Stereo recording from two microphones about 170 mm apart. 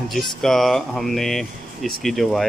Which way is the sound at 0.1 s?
5° left (ahead or behind).